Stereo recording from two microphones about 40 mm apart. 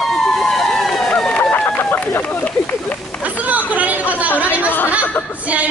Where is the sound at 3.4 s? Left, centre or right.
Right.